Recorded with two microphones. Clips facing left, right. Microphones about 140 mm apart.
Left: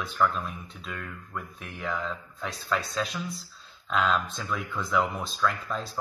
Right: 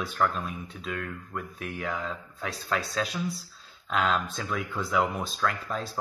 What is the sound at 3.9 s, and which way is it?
Speech, centre (ahead or behind).